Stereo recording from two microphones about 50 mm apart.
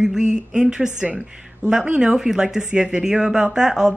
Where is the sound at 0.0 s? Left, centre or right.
Centre.